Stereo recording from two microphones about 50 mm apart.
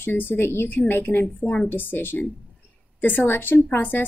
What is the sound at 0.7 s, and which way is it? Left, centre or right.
Speech, left.